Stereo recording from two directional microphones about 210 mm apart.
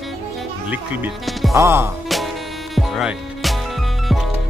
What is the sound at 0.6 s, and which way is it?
Speech, 5° right (ahead or behind).